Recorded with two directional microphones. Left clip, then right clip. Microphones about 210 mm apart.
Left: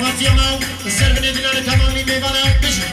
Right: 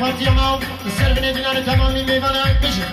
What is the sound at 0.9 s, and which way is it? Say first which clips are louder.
Speech: left 2 dB; 30° right (ahead or behind).